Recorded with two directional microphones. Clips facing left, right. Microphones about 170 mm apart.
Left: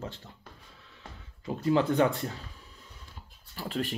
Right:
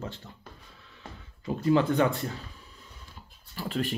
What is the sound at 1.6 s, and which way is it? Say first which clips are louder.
Speech: right 1 dB; 25° left (ahead or behind).